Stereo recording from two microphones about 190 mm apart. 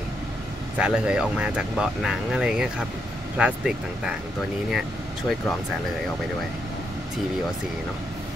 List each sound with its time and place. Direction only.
0.7 s speech: 5° right (ahead or behind)